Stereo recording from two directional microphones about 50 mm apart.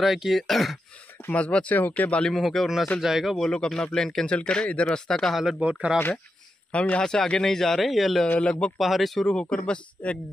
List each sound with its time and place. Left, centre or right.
0.0 s speech: centre
1.3 s speech: left
2.2 s speech: centre
3.0 s speech: centre
3.5 s speech: centre
5.3 s speech: centre
5.6 s speech: right
6.7 s speech: left; by 8.3 s centre
8.4 s speech: left
8.7 s speech: centre
9.3 s speech: left
10.0 s speech: left